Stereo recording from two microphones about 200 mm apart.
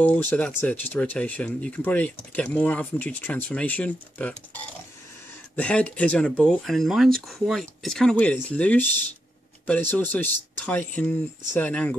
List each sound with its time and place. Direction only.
0.0 s speech: 10° left (ahead or behind)
5.6 s speech: 5° left (ahead or behind)